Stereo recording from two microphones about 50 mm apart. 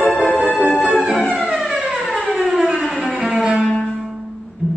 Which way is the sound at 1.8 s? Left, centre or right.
Right.